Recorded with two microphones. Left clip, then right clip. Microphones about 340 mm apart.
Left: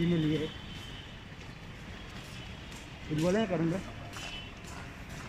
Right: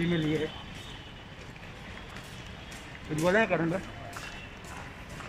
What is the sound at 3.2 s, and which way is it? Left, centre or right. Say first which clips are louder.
Speech: right 5 dB; right.